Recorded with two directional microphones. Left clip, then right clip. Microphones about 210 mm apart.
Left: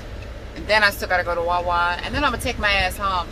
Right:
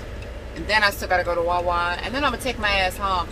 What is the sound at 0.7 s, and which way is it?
Speech, 5° right (ahead or behind).